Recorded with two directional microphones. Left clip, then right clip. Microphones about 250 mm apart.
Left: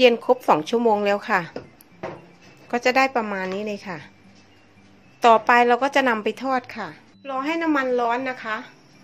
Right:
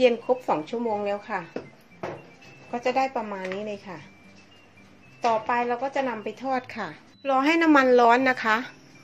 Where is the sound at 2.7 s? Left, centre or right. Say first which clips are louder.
Left 6 dB; left.